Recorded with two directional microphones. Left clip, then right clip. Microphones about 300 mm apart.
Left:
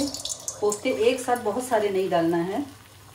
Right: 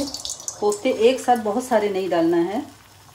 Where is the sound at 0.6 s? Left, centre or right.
Right.